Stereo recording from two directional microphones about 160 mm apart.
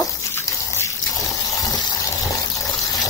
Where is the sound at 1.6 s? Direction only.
25° left (ahead or behind).